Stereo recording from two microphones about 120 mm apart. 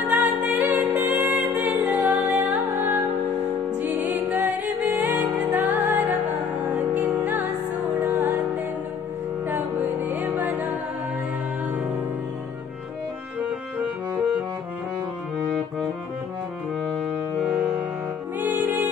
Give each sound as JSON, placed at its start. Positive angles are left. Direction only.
{"t": 0.5, "sound": "music", "side_deg": -15}
{"t": 9.5, "sound": "music", "side_deg": -15}
{"t": 17.4, "sound": "music", "side_deg": -10}